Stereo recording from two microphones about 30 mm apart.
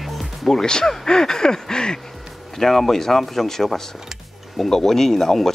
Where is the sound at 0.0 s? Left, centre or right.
Centre.